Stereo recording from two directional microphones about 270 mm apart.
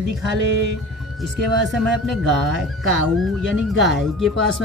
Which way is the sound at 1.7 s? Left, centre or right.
Centre.